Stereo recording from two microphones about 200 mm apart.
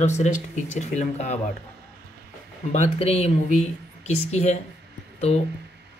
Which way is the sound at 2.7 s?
30° left (ahead or behind).